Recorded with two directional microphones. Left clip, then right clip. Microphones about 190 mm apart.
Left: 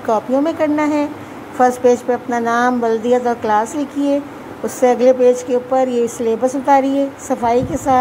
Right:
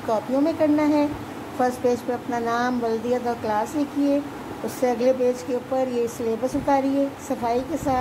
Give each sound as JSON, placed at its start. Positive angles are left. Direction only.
{"t": 0.1, "sound": "a woman's voice", "side_deg": 30}